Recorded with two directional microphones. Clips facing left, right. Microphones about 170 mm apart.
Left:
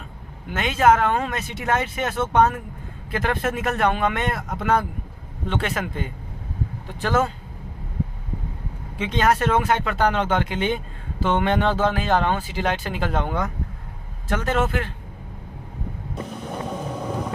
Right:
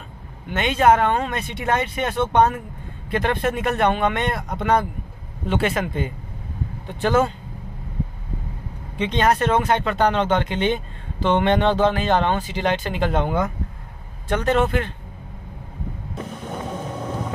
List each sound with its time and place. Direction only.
0.5 s speech: 5° left (ahead or behind)
8.9 s speech: 5° left (ahead or behind)
16.7 s vehicle: 5° left (ahead or behind)